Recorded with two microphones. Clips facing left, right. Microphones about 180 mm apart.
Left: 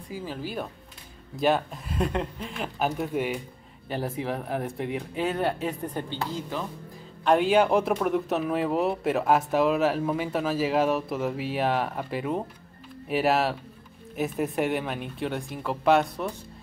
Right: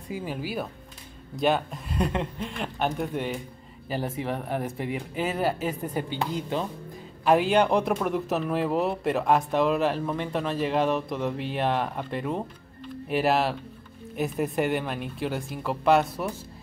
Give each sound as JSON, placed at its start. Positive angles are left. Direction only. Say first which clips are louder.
{"t": 0.1, "sound": "speech", "louder": "right 2 dB", "side_deg": -15}
{"t": 6.0, "sound": "speech", "louder": "right 3 dB", "side_deg": -15}
{"t": 7.2, "sound": "speech", "louder": "even", "side_deg": 0}